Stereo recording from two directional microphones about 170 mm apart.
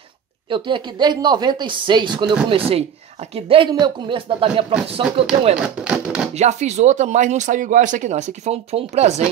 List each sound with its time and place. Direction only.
0.5 s speech: 30° right (ahead or behind)
5.6 s a sound: 5° right (ahead or behind)
6.3 s speech: 40° right (ahead or behind)